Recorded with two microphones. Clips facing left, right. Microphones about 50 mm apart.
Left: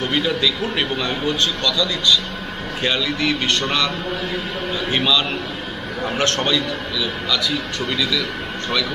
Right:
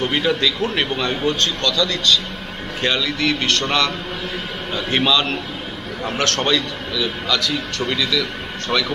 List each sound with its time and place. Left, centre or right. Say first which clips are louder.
0.0 s speech: right 1 dB; centre
1.2 s speech: even; centre
3.2 s a man's voice: right 1 dB; left
4.7 s speech: right 2 dB; centre
6.1 s a man's voice: even; left
6.4 s speech: even; centre